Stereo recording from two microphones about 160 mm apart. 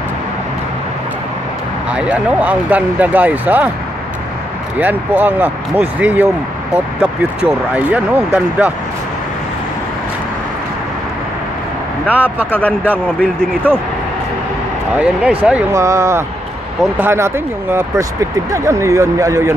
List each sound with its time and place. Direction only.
1.9 s speech: 5° right (ahead or behind)
4.7 s speech: 10° right (ahead or behind)
12.1 s speech: 10° right (ahead or behind)
12.4 s speech: 10° left (ahead or behind)
15.0 s speech: 10° right (ahead or behind)
15.7 s speech: 20° right (ahead or behind)